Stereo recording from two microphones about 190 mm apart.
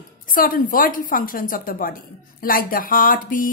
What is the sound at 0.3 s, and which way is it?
A woman's voice, 50° left (ahead or behind).